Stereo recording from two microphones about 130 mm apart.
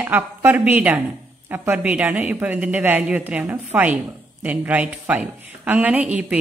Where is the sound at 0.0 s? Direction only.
15° right (ahead or behind).